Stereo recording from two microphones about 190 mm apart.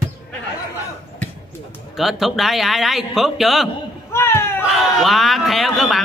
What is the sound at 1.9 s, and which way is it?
A man's voice, centre (ahead or behind).